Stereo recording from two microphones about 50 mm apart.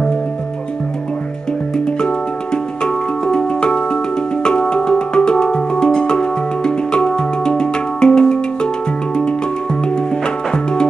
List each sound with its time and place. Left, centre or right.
1.9 s music: centre
9.8 s music: centre